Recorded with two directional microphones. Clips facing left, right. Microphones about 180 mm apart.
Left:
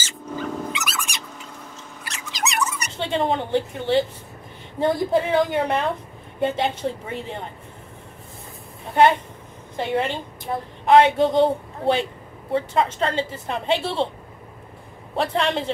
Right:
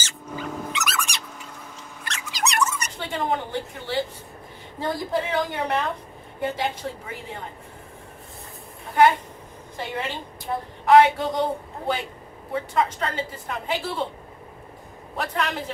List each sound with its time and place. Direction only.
0.0 s dog: centre (ahead or behind)
2.2 s squeak: centre (ahead or behind)
3.0 s a sound: 25° left (ahead or behind)
4.7 s a woman's voice: 20° left (ahead or behind)
9.0 s a woman's voice: 25° left (ahead or behind)
15.1 s a woman's voice: 30° left (ahead or behind)